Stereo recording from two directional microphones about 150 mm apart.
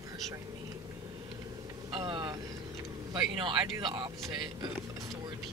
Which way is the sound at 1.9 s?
30° right (ahead or behind).